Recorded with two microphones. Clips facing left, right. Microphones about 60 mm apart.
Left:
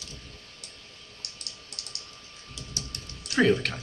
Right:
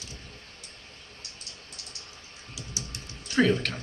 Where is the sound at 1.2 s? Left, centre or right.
Left.